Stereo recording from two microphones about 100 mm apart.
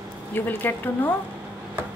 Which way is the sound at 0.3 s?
20° left (ahead or behind).